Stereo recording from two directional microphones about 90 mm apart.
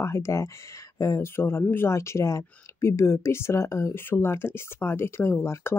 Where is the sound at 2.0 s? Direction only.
35° left (ahead or behind).